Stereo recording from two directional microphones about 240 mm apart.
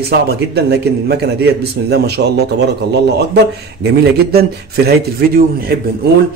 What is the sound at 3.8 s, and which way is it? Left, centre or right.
A man's voice, right.